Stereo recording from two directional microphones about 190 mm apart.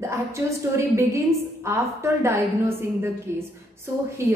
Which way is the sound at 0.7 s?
15° right (ahead or behind).